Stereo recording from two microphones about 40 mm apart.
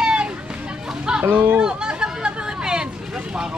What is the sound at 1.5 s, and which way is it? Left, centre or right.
Chatter, right.